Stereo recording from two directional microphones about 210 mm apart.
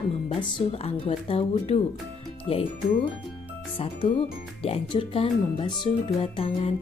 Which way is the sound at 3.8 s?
30° left (ahead or behind).